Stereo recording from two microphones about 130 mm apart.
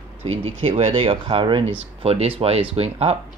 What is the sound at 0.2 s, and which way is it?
Speech, 50° right (ahead or behind).